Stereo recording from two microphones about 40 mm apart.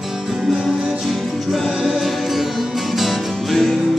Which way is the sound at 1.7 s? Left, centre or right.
Centre.